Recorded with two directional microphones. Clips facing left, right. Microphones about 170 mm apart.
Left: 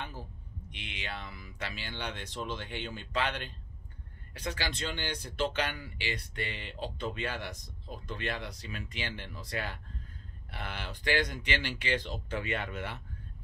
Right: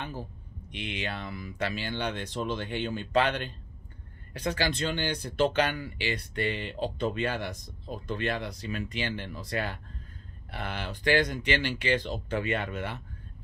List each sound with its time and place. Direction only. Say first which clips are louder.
0.7 s speech: right 7 dB; 50° right (ahead or behind)
5.1 s speech: right 7 dB; 55° right (ahead or behind)